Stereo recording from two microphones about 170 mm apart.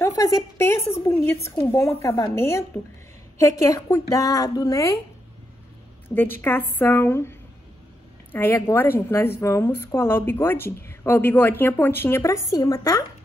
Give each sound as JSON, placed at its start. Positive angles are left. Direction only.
{"t": 0.0, "sound": "a sound", "side_deg": 20}
{"t": 1.7, "sound": "speech", "side_deg": 15}
{"t": 6.0, "sound": "speech", "side_deg": 10}